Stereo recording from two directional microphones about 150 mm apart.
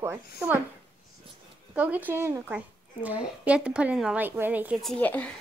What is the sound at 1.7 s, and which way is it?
A child's voice, 10° right (ahead or behind).